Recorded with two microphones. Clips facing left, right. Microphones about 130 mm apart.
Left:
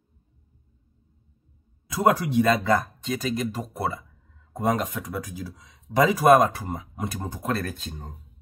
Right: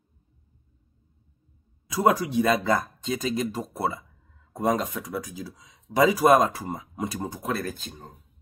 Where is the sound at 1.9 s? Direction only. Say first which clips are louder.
Left 1 dB; 10° right (ahead or behind).